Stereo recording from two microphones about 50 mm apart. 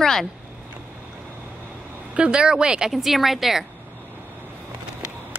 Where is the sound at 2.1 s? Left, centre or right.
Centre.